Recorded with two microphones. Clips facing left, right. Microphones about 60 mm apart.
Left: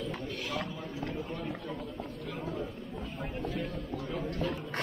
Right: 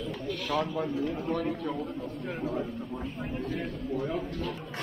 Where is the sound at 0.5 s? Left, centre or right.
Right.